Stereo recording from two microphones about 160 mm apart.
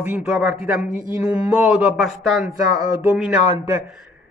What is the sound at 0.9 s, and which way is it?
Speech, 55° right (ahead or behind).